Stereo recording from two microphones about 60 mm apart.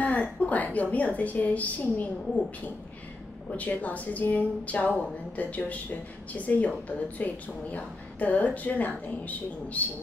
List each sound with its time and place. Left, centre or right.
0.0 s a sound: left
0.9 s speech: left
3.5 s speech: left